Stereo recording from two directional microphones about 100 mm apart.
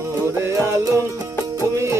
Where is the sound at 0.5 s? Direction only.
35° right (ahead or behind).